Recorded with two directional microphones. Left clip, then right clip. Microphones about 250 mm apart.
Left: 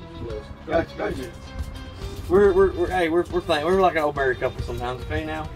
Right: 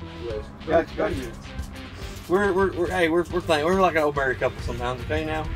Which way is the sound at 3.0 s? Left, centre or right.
Right.